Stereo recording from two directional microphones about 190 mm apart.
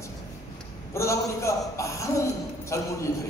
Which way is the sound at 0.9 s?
15° left (ahead or behind).